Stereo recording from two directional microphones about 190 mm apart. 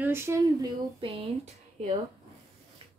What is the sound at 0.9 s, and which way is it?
Speech, 30° right (ahead or behind).